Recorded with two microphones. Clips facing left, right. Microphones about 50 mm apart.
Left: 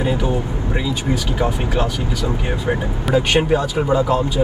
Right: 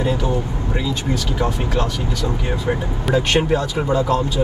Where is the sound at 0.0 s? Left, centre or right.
Centre.